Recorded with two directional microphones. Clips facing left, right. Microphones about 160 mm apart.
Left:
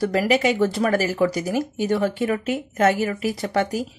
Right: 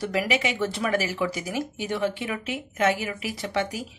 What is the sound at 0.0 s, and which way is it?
Speech, 40° left (ahead or behind).